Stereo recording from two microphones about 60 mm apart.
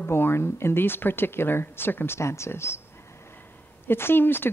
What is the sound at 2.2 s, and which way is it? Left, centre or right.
Speech, left.